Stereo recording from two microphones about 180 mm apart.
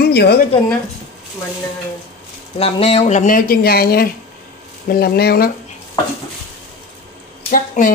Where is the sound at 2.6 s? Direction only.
35° left (ahead or behind); by 5.5 s 60° left (ahead or behind).